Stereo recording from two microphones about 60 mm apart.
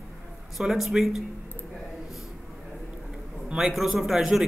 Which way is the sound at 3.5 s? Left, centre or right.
Centre.